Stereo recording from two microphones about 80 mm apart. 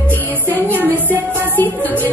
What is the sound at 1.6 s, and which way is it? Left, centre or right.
Music, left.